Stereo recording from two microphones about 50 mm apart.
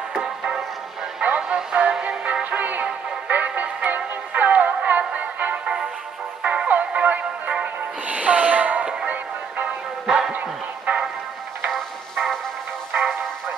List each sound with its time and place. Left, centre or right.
0.1 s music: centre; by 9.7 s right
10.0 s bow-wow: centre
11.7 s music: centre